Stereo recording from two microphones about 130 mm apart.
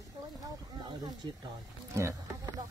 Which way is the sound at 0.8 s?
35° right (ahead or behind).